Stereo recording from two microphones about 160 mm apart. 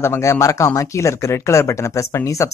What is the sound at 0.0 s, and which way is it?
Speech, 15° left (ahead or behind).